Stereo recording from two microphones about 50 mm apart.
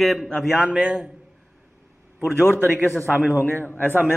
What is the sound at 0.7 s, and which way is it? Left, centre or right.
Speech, centre.